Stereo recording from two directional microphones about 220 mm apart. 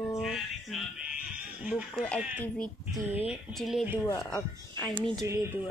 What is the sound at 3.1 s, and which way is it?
A woman's voice, 5° right (ahead or behind).